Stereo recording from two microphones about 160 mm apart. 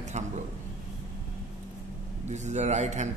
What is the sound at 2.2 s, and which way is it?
Speech, 45° right (ahead or behind).